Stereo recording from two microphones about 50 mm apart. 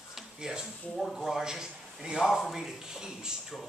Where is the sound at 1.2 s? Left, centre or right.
Centre.